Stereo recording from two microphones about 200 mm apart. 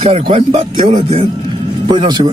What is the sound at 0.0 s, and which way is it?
Speech, 30° right (ahead or behind).